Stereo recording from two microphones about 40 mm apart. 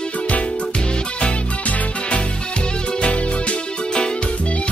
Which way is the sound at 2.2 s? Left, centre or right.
Left.